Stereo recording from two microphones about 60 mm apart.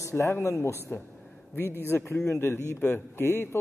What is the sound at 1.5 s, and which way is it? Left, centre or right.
A man's voice, left.